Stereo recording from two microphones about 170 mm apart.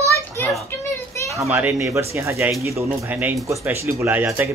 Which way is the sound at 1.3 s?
10° right (ahead or behind).